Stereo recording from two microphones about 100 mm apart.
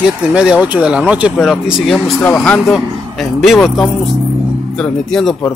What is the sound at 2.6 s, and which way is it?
A man's voice, centre (ahead or behind).